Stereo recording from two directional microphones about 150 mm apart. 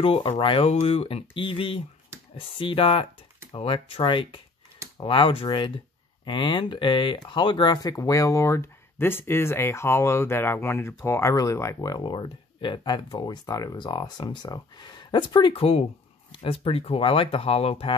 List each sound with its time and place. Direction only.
0.0 s speech: 40° left (ahead or behind)